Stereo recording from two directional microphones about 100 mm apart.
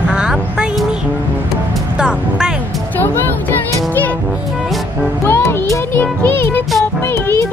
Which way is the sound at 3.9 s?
15° left (ahead or behind).